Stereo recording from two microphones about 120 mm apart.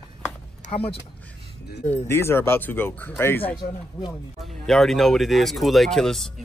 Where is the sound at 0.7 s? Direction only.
55° left (ahead or behind).